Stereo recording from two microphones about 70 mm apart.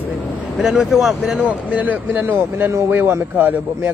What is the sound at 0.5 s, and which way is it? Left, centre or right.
Speech, centre.